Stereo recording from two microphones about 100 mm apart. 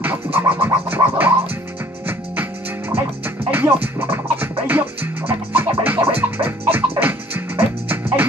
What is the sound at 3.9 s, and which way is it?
Music, 20° right (ahead or behind).